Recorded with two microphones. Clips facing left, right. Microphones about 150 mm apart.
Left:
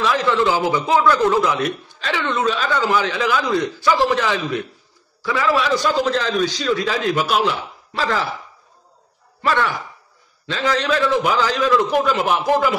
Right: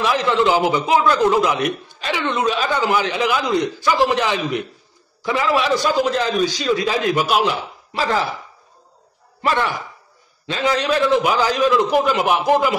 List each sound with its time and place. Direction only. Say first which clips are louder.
0.0 s a man's voice: right 1 dB; 20° right (ahead or behind)
10.4 s a man's voice: right 1 dB; 15° right (ahead or behind)